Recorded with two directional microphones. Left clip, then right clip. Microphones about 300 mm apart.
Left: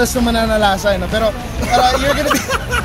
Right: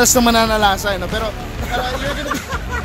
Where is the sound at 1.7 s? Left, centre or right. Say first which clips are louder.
Left 9 dB; centre.